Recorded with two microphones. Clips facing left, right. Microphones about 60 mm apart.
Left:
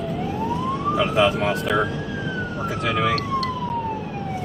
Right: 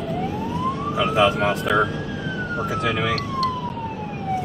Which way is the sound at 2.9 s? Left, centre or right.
Centre.